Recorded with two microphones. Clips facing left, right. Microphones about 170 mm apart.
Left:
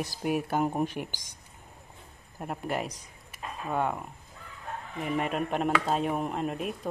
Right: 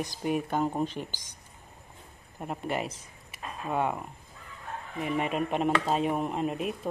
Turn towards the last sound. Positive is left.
turn(degrees=0)  # may be behind; listen again after turning